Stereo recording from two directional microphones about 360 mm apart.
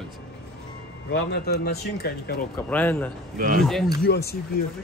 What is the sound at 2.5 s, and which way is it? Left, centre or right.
Speech, centre.